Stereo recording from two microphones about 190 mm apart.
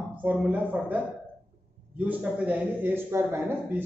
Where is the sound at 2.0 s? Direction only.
10° right (ahead or behind).